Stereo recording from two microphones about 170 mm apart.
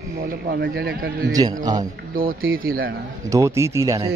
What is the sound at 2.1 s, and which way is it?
Speech, 60° right (ahead or behind).